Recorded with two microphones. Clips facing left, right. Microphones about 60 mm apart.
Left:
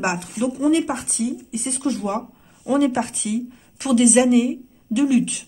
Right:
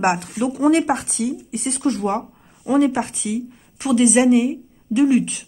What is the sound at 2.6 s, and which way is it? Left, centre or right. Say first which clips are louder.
Speech: right 2 dB; right.